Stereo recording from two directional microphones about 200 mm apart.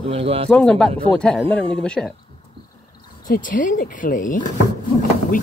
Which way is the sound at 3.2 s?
45° left (ahead or behind).